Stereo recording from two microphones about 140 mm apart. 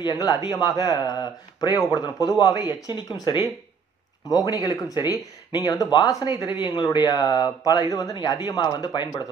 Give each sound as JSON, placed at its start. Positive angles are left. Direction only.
{"t": 0.0, "sound": "speech", "side_deg": 30}